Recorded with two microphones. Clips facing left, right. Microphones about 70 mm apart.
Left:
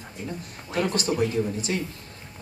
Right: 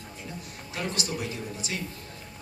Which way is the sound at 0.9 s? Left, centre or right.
Left.